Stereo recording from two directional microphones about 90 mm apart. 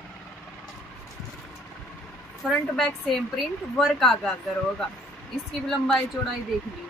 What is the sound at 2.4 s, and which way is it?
A woman's voice, 5° left (ahead or behind).